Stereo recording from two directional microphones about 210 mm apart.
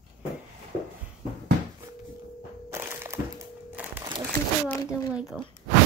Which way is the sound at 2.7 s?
10° right (ahead or behind).